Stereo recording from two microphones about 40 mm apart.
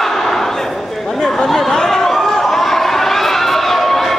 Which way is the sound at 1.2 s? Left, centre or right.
Centre.